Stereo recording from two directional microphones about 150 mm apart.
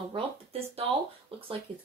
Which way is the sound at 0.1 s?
40° right (ahead or behind).